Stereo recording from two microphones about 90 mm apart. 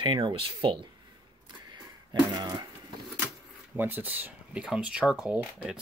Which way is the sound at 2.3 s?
50° right (ahead or behind).